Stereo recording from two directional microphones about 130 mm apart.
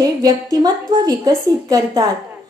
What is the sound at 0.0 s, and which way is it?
A woman's voice, 30° right (ahead or behind).